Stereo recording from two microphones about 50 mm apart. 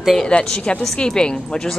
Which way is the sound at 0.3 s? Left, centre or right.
Centre.